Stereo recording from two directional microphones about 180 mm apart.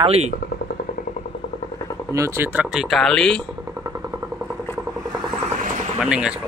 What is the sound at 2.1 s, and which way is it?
Speech, 15° right (ahead or behind).